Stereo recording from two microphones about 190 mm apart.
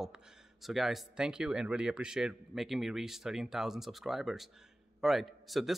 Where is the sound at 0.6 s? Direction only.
Centre (ahead or behind).